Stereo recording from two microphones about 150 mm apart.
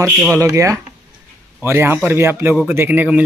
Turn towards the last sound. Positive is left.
turn(degrees=-10)  # may be behind; listen again after turning